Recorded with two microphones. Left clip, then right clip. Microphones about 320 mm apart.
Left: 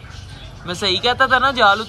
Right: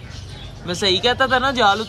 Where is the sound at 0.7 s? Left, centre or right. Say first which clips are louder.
Even; centre.